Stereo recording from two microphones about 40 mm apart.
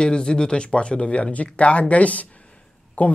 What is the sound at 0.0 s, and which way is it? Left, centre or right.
Speech, left.